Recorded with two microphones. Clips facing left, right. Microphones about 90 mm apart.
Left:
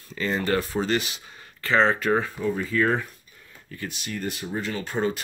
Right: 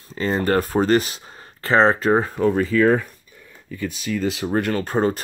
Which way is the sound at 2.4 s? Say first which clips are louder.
Right 8 dB; 70° right (ahead or behind).